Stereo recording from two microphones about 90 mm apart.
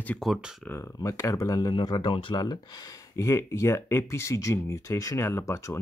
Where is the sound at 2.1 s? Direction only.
70° left (ahead or behind).